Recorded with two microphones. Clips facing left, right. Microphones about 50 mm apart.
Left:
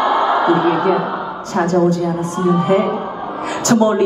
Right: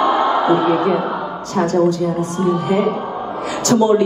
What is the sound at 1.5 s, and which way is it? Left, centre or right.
A man's voice, left.